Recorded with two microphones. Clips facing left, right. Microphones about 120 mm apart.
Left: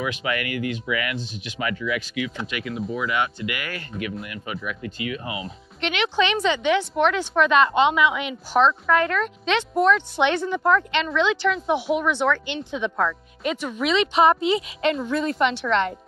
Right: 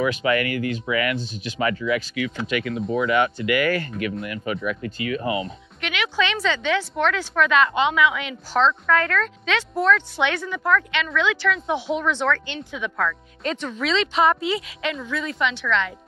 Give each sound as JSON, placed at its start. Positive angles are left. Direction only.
{"t": 0.0, "sound": "speech", "side_deg": -40}
{"t": 2.2, "sound": "speech", "side_deg": -55}
{"t": 5.8, "sound": "a woman's voice", "side_deg": 25}
{"t": 11.7, "sound": "a woman's voice", "side_deg": 15}
{"t": 13.4, "sound": "a woman's voice", "side_deg": 10}
{"t": 14.9, "sound": "speech", "side_deg": 40}